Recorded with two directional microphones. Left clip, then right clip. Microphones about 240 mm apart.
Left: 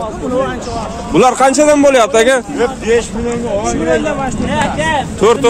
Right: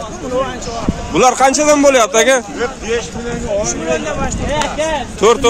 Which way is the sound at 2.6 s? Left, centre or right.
Left.